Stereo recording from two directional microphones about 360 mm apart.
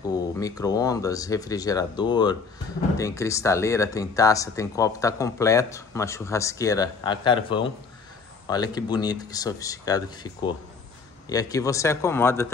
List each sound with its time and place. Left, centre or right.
0.1 s speech: centre